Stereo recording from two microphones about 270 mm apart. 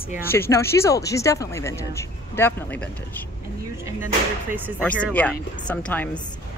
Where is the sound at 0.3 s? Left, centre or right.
Centre.